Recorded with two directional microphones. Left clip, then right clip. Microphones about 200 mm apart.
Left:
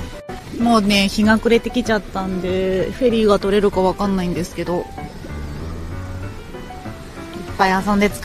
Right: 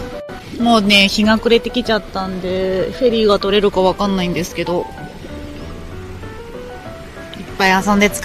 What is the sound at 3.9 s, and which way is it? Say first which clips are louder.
Speech: right 3 dB; centre (ahead or behind).